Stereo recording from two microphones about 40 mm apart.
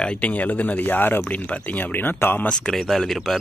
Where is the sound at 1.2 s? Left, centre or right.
Left.